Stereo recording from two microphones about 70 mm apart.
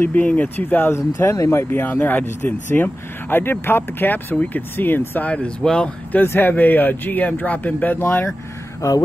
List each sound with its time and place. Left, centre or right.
0.0 s speech: left
0.9 s speech: left
5.3 s speech: centre
6.2 s speech: left